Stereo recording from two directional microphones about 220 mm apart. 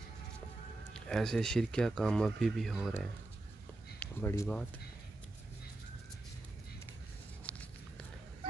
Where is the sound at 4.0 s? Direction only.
10° left (ahead or behind).